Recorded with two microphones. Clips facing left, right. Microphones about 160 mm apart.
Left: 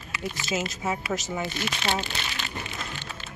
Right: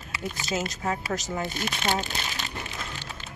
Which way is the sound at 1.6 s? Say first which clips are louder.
Right 2 dB; 40° right (ahead or behind).